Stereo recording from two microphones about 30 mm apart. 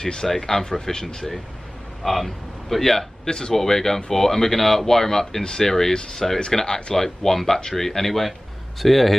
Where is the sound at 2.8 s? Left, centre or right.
Centre.